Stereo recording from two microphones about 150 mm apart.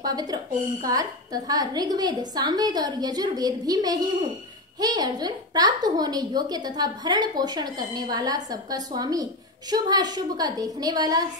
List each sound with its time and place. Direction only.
0.0 s a woman's voice: 25° right (ahead or behind)